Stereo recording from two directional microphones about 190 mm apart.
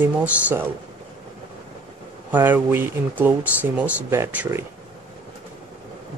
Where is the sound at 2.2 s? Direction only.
10° right (ahead or behind).